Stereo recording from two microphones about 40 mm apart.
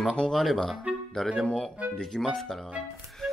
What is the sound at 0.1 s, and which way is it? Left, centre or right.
Speech, centre.